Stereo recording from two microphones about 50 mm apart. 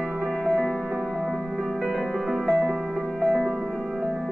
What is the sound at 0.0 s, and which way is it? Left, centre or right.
Music, centre.